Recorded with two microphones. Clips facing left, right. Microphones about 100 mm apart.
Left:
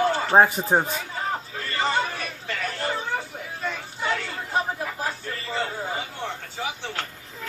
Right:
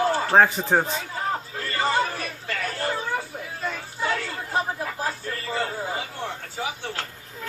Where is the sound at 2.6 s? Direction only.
Centre (ahead or behind).